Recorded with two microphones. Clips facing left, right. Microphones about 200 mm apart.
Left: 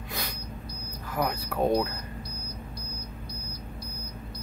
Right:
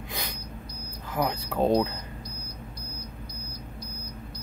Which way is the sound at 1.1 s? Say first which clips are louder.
Right 1 dB; 25° right (ahead or behind).